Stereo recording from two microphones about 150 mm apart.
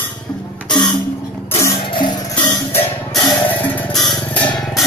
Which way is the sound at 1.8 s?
30° left (ahead or behind).